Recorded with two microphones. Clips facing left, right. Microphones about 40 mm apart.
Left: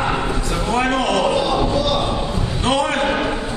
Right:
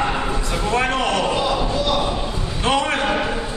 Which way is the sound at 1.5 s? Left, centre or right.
Centre.